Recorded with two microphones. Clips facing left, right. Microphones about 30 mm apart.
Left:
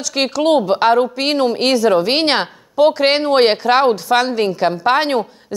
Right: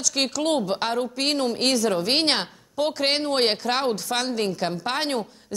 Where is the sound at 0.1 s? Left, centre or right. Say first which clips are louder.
Left 10 dB; left.